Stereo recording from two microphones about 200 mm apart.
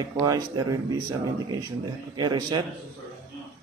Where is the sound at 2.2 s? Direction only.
20° right (ahead or behind).